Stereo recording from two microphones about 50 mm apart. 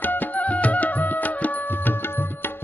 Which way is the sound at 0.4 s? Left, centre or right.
Left.